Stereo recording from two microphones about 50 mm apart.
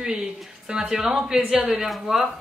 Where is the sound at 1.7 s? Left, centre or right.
Centre.